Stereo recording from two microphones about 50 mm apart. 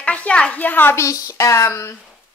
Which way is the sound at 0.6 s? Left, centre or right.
Left.